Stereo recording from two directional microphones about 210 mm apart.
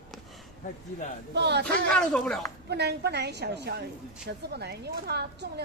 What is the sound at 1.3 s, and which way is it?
Speech, 55° right (ahead or behind).